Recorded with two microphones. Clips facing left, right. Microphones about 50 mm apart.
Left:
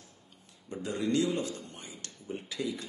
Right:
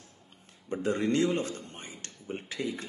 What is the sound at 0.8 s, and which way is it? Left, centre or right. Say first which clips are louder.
Speech: right 3 dB; right.